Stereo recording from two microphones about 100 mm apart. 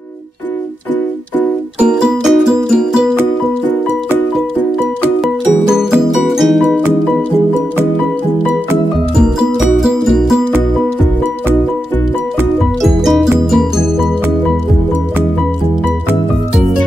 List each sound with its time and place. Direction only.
1.8 s music: 10° right (ahead or behind)
5.2 s music: 5° right (ahead or behind)
9.8 s music: centre (ahead or behind)
12.8 s music: 5° right (ahead or behind)